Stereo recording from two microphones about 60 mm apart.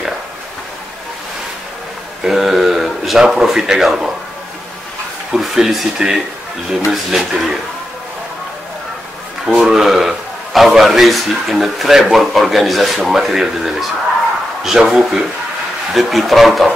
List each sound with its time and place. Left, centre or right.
2.2 s speech: centre
5.3 s a man's voice: centre
9.6 s a man's voice: centre